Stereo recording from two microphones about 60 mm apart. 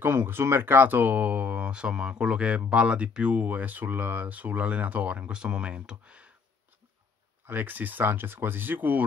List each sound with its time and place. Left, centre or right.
0.0 s speech: right; by 6.3 s centre
7.4 s speech: right